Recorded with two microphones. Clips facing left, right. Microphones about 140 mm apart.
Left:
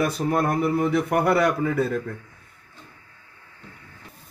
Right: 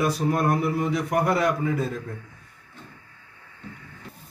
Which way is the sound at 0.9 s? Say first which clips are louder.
Left 3 dB; 60° left (ahead or behind).